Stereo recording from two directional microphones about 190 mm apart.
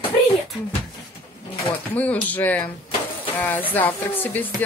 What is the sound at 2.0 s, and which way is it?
Speech, 10° left (ahead or behind).